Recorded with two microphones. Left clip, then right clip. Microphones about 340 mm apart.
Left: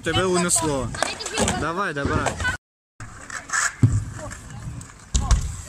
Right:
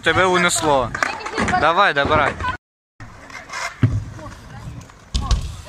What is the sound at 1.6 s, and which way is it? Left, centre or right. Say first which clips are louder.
Speech: right 11 dB; centre.